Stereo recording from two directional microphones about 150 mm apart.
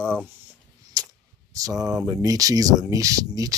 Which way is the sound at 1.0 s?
25° right (ahead or behind).